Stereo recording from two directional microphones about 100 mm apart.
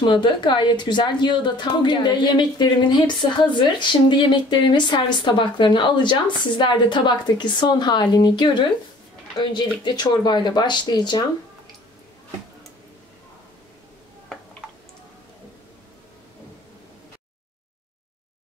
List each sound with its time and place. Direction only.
0.0 s a woman's voice: 50° left (ahead or behind)